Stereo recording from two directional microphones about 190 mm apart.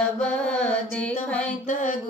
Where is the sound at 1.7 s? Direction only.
45° left (ahead or behind).